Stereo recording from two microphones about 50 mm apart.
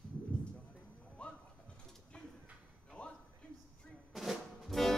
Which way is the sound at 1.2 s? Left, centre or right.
Left.